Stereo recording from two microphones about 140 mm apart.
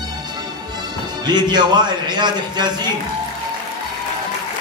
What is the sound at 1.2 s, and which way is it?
A man's voice, 30° right (ahead or behind).